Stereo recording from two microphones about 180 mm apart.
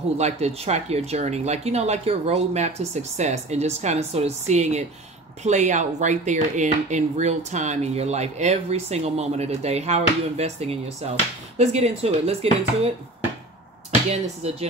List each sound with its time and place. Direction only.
0.2 s speech: 35° right (ahead or behind)
14.4 s speech: 35° right (ahead or behind)